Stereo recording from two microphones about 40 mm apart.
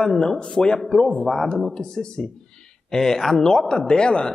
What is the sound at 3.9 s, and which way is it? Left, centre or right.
Speech, left.